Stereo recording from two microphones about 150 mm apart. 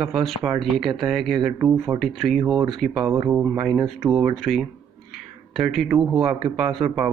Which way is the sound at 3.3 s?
10° right (ahead or behind).